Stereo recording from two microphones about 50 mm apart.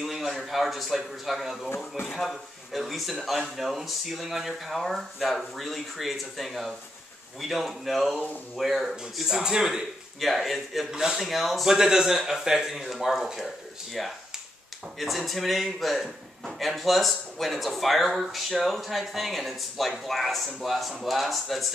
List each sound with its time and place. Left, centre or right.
0.0 s a man's voice: centre
10.2 s a man's voice: centre
10.9 s speech: centre
11.1 s a man's voice: centre